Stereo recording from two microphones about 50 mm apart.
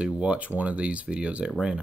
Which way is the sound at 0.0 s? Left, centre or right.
Right.